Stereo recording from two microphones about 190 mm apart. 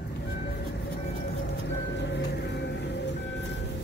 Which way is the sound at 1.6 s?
65° left (ahead or behind).